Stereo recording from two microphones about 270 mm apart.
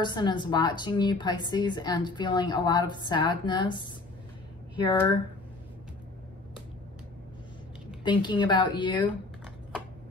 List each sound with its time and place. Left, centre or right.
0.0 s a woman's voice: centre
8.0 s a woman's voice: centre